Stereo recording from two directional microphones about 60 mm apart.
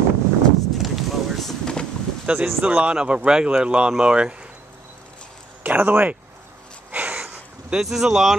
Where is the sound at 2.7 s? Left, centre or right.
Centre.